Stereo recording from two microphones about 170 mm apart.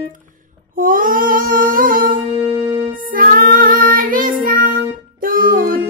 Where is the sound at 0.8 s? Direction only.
55° right (ahead or behind).